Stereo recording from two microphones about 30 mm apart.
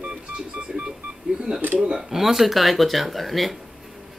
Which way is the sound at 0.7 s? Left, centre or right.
Right.